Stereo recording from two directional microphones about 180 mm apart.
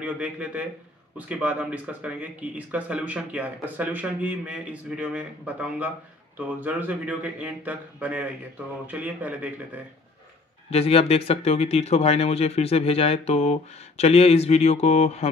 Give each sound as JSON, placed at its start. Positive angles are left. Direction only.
{"t": 0.0, "sound": "speech", "side_deg": -5}
{"t": 10.7, "sound": "speech", "side_deg": 35}